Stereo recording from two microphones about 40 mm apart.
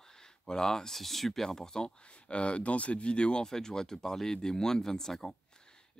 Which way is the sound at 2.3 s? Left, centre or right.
Left.